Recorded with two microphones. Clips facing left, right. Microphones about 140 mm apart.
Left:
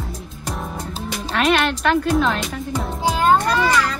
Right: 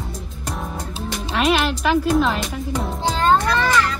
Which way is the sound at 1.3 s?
Centre (ahead or behind).